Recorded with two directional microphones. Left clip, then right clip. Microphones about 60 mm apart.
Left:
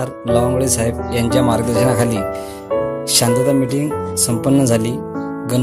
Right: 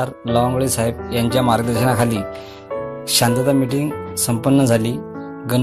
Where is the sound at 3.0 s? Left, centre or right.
Left.